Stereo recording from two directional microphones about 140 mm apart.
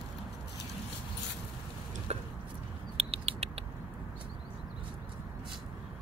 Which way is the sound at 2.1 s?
50° right (ahead or behind).